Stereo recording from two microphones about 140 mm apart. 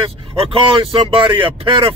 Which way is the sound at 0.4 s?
40° right (ahead or behind).